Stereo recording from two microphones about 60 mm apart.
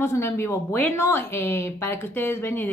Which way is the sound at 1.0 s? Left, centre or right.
Left.